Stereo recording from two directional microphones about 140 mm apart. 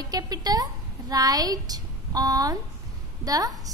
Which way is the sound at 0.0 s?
30° right (ahead or behind).